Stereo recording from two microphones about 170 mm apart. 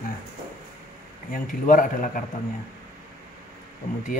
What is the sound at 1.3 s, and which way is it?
Speech, 55° left (ahead or behind).